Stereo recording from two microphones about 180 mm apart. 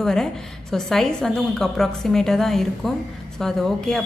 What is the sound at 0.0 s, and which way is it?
Speech, 5° left (ahead or behind).